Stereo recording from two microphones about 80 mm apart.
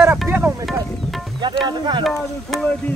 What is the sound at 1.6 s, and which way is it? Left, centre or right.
Speech, right.